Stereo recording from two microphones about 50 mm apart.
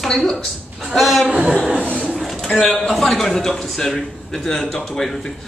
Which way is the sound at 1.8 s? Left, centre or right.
Left.